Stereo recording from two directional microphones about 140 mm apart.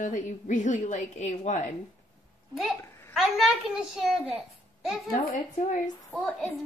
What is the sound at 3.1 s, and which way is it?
A child's voice, 5° right (ahead or behind).